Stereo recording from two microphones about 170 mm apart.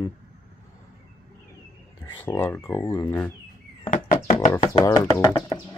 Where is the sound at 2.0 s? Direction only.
15° left (ahead or behind).